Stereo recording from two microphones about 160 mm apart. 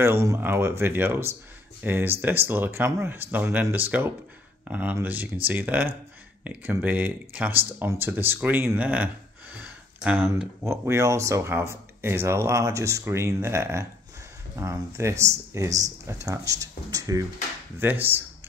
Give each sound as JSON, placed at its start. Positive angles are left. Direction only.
{"t": 0.0, "sound": "speech", "side_deg": -15}